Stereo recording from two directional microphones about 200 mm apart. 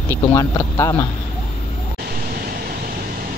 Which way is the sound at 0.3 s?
15° left (ahead or behind).